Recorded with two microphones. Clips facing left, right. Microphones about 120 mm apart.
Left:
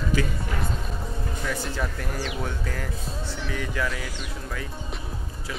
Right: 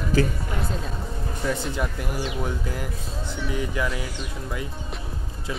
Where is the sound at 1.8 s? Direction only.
10° right (ahead or behind).